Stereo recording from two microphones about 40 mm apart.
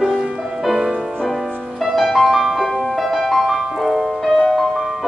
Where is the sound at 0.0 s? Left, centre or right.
Centre.